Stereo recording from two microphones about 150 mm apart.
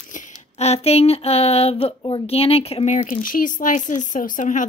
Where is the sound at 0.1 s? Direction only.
50° left (ahead or behind).